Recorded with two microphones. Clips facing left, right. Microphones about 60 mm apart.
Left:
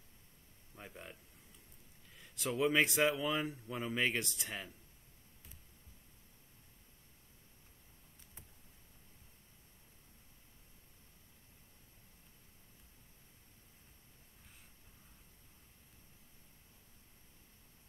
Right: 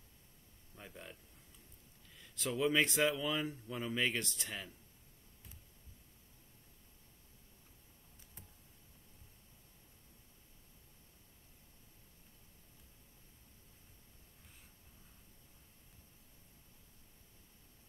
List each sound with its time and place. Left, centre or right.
0.7 s speech: centre
2.1 s speech: centre